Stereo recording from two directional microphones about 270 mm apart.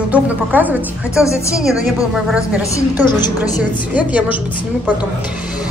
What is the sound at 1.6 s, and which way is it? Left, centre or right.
Speech, centre.